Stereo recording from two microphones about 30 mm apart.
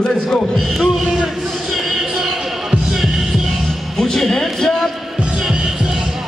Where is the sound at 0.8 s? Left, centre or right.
Centre.